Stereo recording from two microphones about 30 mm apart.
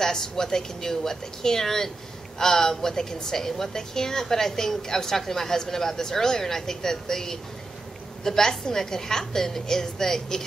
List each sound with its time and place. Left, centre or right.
0.0 s a woman's voice: centre